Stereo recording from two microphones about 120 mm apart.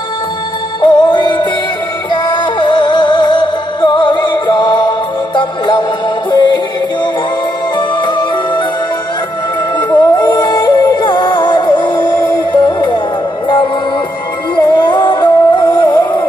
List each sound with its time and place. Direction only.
0.7 s music: 40° left (ahead or behind)
9.8 s music: 35° left (ahead or behind)
14.5 s music: 40° left (ahead or behind)